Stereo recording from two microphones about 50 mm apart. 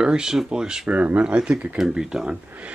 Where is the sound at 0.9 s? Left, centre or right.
Right.